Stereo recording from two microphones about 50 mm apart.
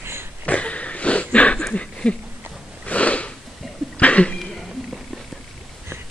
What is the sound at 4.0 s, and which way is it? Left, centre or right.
Cough, left.